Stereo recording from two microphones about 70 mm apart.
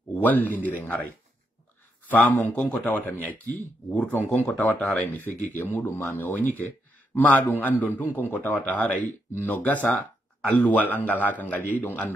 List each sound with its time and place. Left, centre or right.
0.2 s a man's voice: left
2.0 s a man's voice: left